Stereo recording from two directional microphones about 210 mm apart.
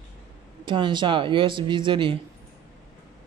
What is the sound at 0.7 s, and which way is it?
Speech, 20° right (ahead or behind).